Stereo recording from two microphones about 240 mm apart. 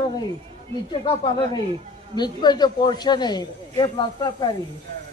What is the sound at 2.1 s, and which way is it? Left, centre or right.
A man's voice, centre.